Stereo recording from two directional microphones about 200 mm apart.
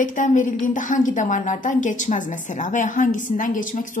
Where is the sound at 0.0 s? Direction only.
40° left (ahead or behind).